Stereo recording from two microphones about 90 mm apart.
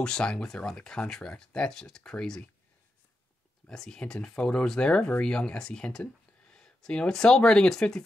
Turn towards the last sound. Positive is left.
turn(degrees=5)  # may be behind; listen again after turning